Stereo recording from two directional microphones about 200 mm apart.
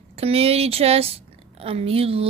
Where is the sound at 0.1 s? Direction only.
30° right (ahead or behind).